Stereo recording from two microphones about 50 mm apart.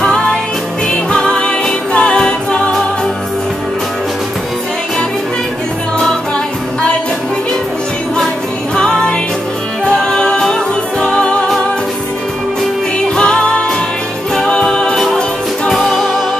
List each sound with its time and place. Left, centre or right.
0.0 s music: centre
8.7 s music: centre
13.1 s music: centre
14.3 s a capella: centre
15.7 s music: centre